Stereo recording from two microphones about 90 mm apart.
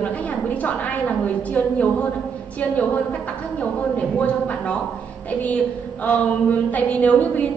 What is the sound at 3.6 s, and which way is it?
A woman's voice, 15° left (ahead or behind).